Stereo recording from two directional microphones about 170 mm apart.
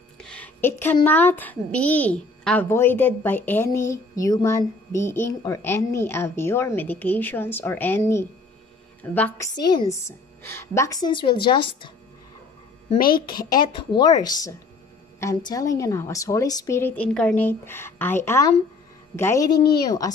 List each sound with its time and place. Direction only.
0.2 s a sound: 5° left (ahead or behind)
1.0 s a woman's voice: 10° left (ahead or behind)
9.6 s a woman's voice: 25° left (ahead or behind)
13.0 s speech: 60° left (ahead or behind)
13.5 s a woman's voice: 25° left (ahead or behind)